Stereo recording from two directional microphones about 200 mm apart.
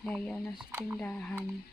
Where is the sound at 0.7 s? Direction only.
10° right (ahead or behind).